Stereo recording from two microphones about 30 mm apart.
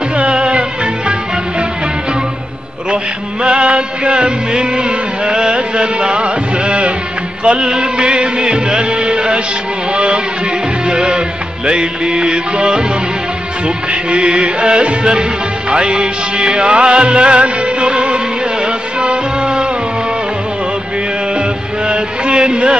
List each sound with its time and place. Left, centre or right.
0.2 s music: right
3.4 s music: right
14.1 s music: right
21.4 s music: right